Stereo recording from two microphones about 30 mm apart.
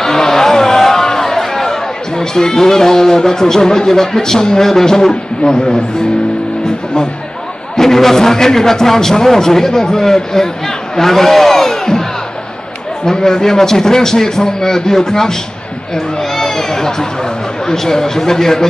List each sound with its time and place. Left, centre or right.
0.0 s a sound: centre
4.6 s a man's voice: centre
7.7 s a man's voice: centre
11.0 s crowd: centre
13.0 s a man's voice: centre